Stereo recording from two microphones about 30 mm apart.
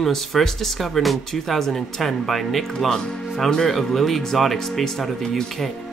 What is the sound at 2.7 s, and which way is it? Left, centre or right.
Speech, centre.